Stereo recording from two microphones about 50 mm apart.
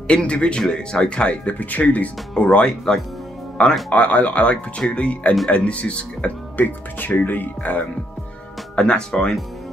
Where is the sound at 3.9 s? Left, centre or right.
Left.